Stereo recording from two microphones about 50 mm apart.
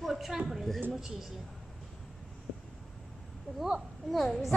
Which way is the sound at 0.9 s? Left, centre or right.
Centre.